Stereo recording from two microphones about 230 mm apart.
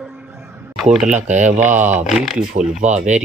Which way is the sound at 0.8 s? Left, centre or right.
Centre.